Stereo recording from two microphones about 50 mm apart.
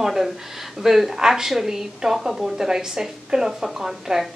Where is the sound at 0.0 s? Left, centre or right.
Centre.